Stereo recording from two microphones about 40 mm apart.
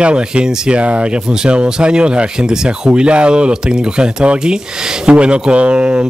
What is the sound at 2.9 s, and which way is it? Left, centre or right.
Speech, right.